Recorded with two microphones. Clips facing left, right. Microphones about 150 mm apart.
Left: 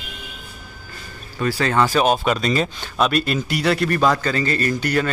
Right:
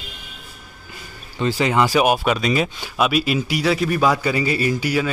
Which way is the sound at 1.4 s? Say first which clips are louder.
Right 1 dB; 15° right (ahead or behind).